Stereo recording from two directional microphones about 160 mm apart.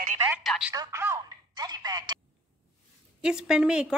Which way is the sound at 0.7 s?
20° right (ahead or behind).